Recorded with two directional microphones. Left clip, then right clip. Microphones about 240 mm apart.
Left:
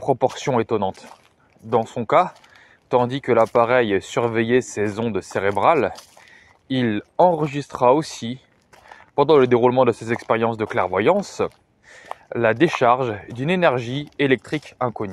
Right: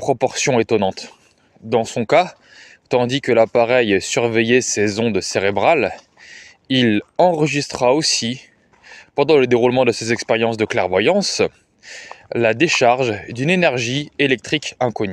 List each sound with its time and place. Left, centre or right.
0.1 s speech: right